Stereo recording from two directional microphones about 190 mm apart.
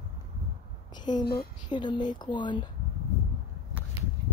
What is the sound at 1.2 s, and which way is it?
Speech, 55° left (ahead or behind).